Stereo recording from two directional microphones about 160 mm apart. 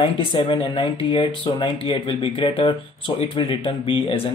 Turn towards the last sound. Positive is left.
turn(degrees=35)  # may be behind; listen again after turning